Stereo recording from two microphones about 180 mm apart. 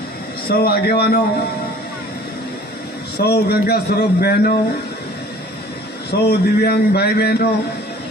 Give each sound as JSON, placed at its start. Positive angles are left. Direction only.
{"t": 0.5, "sound": "a man's voice", "side_deg": 60}
{"t": 3.2, "sound": "a man's voice", "side_deg": 65}
{"t": 6.0, "sound": "a man's voice", "side_deg": 65}